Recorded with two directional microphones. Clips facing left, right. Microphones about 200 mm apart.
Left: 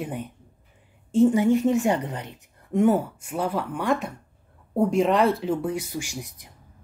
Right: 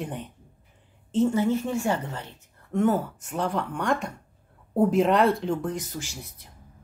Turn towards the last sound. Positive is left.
turn(degrees=15)  # may be behind; listen again after turning